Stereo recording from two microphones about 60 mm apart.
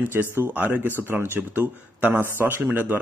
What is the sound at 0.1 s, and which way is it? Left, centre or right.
Speech, right.